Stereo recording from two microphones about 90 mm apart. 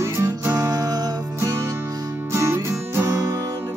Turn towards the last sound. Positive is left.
turn(degrees=-40)  # may be behind; listen again after turning